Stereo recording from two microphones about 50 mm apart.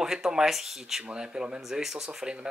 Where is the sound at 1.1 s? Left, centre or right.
Centre.